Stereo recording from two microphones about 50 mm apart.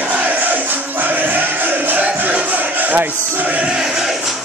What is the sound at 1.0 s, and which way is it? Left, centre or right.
Music, right.